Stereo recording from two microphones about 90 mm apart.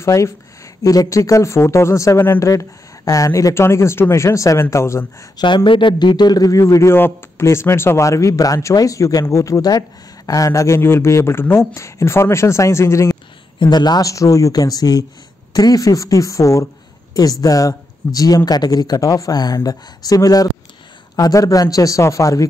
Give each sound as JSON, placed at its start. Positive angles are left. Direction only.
{"t": 0.0, "sound": "speech", "side_deg": 35}
{"t": 5.4, "sound": "speech", "side_deg": 60}
{"t": 6.6, "sound": "speech", "side_deg": 30}
{"t": 13.6, "sound": "speech", "side_deg": 50}